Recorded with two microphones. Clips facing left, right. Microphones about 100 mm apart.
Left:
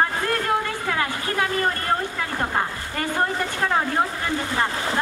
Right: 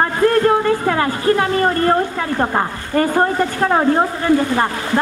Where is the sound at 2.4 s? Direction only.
50° right (ahead or behind).